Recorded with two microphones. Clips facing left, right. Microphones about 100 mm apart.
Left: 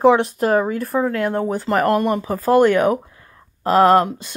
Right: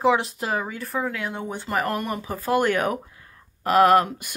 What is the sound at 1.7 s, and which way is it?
Speech, 35° left (ahead or behind).